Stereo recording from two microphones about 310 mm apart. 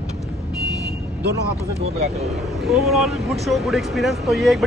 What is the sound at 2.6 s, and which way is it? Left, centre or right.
Speech, centre.